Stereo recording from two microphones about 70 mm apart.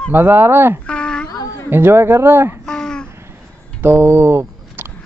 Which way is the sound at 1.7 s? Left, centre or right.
Right.